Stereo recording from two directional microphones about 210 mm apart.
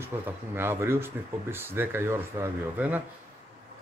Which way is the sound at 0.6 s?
10° right (ahead or behind).